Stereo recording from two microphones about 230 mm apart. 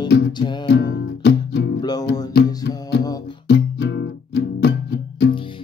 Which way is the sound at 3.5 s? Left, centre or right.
Left.